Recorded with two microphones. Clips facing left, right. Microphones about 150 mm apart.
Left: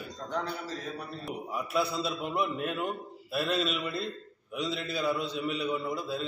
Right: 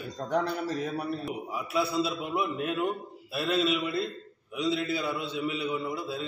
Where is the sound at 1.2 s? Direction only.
Centre (ahead or behind).